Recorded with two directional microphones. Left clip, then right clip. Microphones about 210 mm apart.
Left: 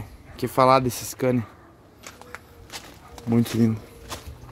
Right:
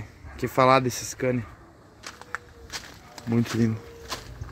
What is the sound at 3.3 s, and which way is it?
Speech, 15° left (ahead or behind).